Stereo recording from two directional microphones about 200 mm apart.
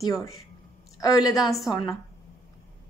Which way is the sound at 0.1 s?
15° left (ahead or behind).